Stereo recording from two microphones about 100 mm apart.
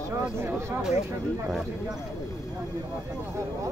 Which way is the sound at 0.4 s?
25° right (ahead or behind).